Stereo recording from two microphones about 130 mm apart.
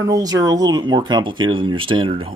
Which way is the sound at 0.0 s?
30° right (ahead or behind).